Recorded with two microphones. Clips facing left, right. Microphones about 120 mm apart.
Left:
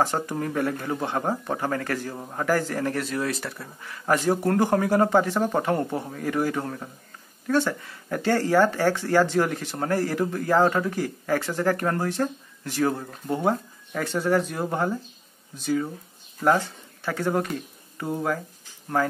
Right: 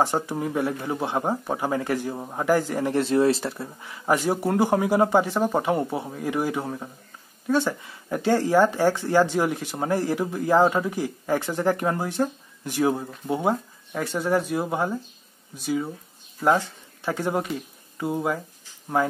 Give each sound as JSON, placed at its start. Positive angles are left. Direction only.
{"t": 0.0, "sound": "speech", "side_deg": -10}
{"t": 2.9, "sound": "speech", "side_deg": -25}
{"t": 3.8, "sound": "speech", "side_deg": -15}